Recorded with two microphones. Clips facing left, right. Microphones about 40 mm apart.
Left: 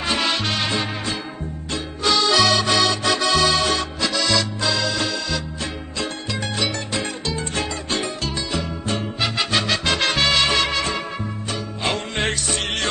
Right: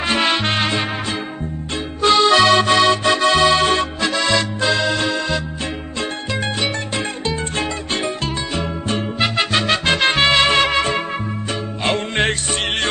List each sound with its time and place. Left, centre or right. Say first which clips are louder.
0.0 s music: right 4 dB; right
2.0 s accordion: right 5 dB; right
6.6 s music: right 2 dB; right